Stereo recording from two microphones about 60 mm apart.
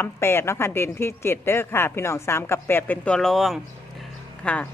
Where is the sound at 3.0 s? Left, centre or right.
Centre.